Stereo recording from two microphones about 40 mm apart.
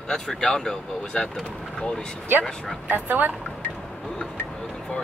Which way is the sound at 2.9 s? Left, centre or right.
Right.